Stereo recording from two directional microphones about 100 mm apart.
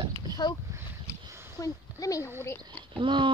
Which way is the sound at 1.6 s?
35° left (ahead or behind).